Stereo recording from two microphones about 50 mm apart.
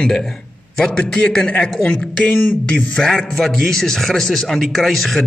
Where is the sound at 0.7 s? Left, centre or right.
Centre.